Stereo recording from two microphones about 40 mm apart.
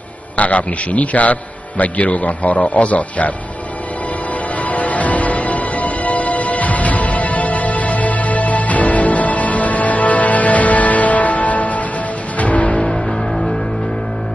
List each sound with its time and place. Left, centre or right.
0.4 s a man's voice: left
4.6 s music: left
12.6 s music: centre